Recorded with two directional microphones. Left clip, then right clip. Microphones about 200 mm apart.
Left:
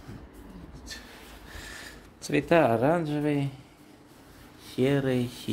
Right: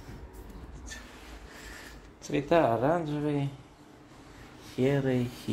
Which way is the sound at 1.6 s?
35° left (ahead or behind).